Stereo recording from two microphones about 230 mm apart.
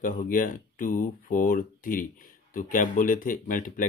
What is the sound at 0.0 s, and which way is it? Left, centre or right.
Speech, left.